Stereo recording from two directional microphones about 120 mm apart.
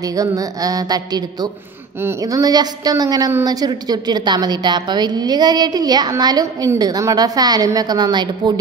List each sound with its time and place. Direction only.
0.0 s a woman's voice: 30° right (ahead or behind)